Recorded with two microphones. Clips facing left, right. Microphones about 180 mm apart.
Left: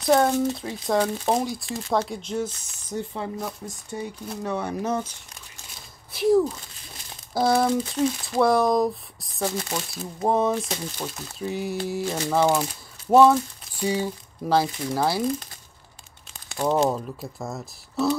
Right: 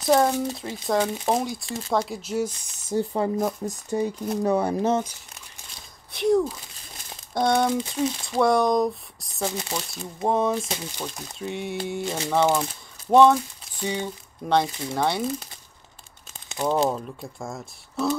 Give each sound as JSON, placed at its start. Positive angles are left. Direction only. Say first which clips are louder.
{"t": 0.0, "sound": "speech", "louder": "left 1 dB", "side_deg": 0}
{"t": 2.9, "sound": "speech", "louder": "right 6 dB", "side_deg": -40}
{"t": 6.1, "sound": "speech", "louder": "left 1 dB", "side_deg": 0}
{"t": 16.6, "sound": "speech", "louder": "left 1 dB", "side_deg": 0}